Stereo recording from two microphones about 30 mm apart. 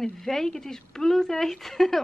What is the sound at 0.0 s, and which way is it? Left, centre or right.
Speech, centre.